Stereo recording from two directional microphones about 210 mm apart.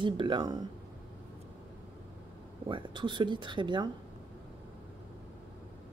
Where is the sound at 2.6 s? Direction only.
20° right (ahead or behind).